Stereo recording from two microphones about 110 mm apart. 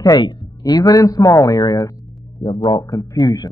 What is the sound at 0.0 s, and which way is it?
A man's voice, 40° left (ahead or behind).